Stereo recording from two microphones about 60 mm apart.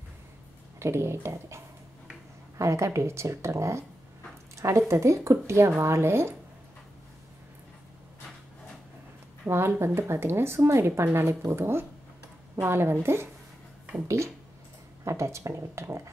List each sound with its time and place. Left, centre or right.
0.7 s speech: right
2.6 s speech: right
9.5 s a woman's voice: right
14.0 s speech: right